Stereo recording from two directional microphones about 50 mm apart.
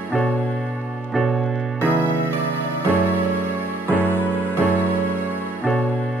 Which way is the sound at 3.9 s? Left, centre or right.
Left.